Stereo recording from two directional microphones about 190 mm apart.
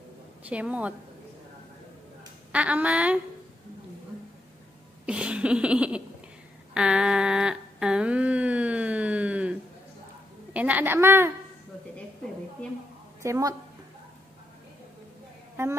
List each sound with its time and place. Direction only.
0.5 s speech: 5° right (ahead or behind)
2.5 s speech: 5° right (ahead or behind)
5.0 s a sound: 5° right (ahead or behind)
10.5 s a woman's voice: 5° right (ahead or behind)
13.2 s speech: 15° right (ahead or behind)
15.6 s speech: 15° right (ahead or behind)